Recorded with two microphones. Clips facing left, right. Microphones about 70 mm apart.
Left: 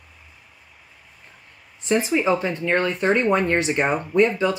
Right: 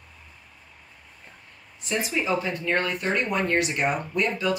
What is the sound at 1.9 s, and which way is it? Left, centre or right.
Speech, left.